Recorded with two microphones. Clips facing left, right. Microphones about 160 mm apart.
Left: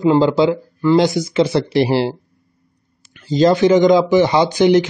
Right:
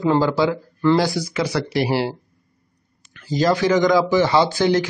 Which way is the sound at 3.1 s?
25° left (ahead or behind).